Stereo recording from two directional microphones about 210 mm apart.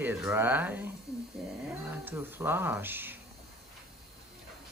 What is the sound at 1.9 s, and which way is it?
Speech, 10° right (ahead or behind).